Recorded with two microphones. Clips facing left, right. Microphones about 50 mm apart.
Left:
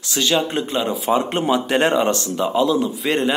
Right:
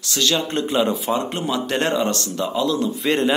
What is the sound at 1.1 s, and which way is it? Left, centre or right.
Speech, centre.